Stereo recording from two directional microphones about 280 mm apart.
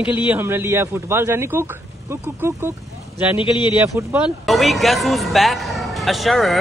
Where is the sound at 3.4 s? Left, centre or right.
Centre.